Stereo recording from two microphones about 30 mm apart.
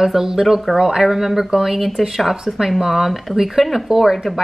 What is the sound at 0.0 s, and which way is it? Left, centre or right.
A woman's voice, centre.